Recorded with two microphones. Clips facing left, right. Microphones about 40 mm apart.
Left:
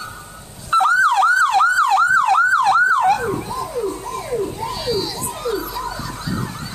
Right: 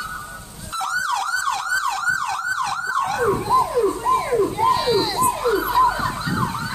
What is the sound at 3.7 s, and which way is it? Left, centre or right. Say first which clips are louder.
Emergency vehicle: right 5 dB; right.